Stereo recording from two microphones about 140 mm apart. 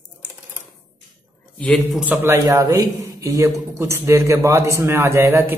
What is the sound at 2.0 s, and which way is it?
A man's voice, 20° right (ahead or behind).